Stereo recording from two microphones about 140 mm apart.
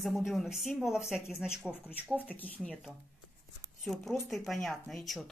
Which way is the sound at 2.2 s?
10° left (ahead or behind).